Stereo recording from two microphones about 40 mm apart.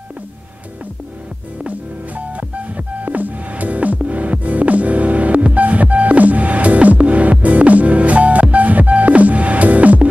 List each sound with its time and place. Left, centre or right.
1.7 s music: right